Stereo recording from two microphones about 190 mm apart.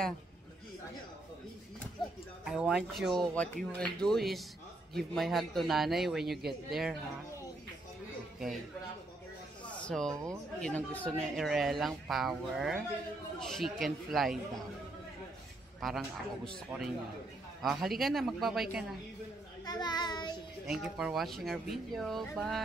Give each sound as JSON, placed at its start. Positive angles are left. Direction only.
{"t": 2.4, "sound": "speech", "side_deg": -5}
{"t": 9.7, "sound": "a sound", "side_deg": 5}
{"t": 10.1, "sound": "speech", "side_deg": -15}
{"t": 10.6, "sound": "speech", "side_deg": 10}
{"t": 16.4, "sound": "speech", "side_deg": 0}
{"t": 19.6, "sound": "child singing", "side_deg": 20}
{"t": 20.6, "sound": "speech", "side_deg": -5}